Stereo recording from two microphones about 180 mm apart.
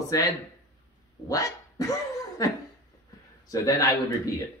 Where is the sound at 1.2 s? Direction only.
20° left (ahead or behind).